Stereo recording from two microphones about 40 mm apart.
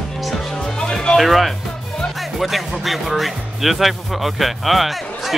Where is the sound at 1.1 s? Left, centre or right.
Centre.